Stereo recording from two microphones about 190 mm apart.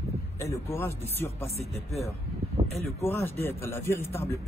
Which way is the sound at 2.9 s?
10° left (ahead or behind).